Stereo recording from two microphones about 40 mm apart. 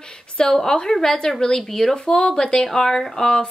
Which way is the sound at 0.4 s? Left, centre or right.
Centre.